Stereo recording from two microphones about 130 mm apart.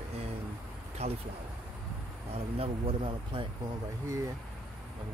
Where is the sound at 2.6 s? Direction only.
45° right (ahead or behind).